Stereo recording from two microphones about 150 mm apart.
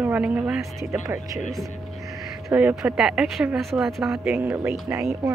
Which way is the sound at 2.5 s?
10° right (ahead or behind).